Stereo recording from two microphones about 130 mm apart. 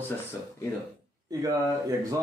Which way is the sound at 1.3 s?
30° right (ahead or behind).